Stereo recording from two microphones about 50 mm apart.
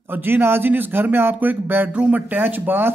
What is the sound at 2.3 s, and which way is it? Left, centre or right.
Speech, right.